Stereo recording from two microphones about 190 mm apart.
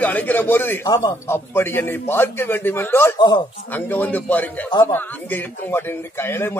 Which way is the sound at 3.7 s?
10° left (ahead or behind).